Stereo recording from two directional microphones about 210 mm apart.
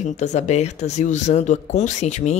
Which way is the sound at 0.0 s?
35° left (ahead or behind).